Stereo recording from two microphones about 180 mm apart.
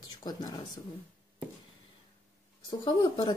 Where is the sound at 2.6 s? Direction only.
25° left (ahead or behind).